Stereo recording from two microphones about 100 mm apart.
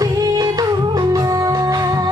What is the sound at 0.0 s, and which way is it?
Music, 40° right (ahead or behind).